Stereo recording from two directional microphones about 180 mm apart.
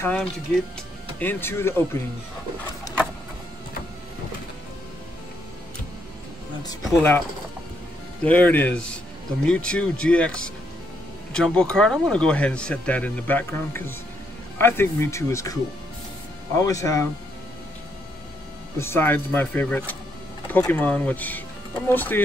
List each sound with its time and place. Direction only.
0.0 s speech: 10° left (ahead or behind)
6.6 s speech: 20° left (ahead or behind)
16.5 s speech: 20° left (ahead or behind)
18.8 s speech: 15° left (ahead or behind)